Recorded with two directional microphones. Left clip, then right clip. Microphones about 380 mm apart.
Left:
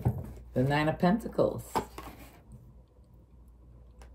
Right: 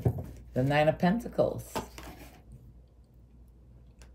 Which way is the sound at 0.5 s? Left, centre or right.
Centre.